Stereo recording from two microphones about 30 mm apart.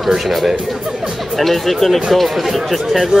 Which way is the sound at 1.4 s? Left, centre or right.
Centre.